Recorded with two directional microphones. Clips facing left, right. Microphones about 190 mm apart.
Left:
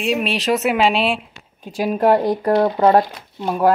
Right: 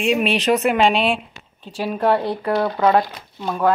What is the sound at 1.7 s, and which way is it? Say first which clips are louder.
Speech: left 3 dB; 15° left (ahead or behind).